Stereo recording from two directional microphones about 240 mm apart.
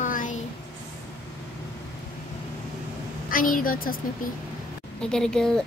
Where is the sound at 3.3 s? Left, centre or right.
Left.